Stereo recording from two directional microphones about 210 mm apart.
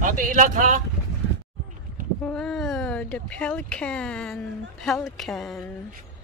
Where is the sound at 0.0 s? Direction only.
40° right (ahead or behind).